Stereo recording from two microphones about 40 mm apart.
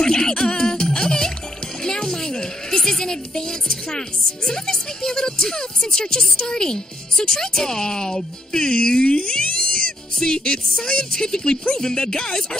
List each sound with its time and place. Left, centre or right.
0.0 s music: centre
4.5 s speech: centre